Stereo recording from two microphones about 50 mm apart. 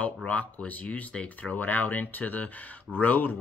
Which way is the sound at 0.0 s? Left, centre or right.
Left.